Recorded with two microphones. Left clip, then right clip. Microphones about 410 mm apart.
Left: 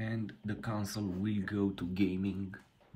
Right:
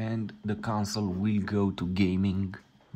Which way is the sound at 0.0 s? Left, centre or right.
Centre.